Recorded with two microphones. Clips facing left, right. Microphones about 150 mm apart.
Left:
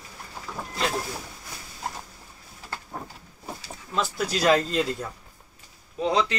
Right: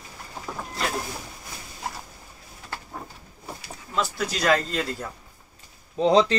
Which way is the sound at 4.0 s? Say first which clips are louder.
Even; 5° left (ahead or behind).